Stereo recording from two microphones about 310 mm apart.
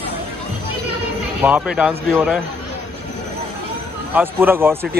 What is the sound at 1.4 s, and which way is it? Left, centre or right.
Speech, centre.